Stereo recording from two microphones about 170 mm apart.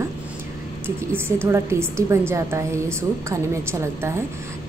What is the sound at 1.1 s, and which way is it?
A woman's voice, 15° right (ahead or behind).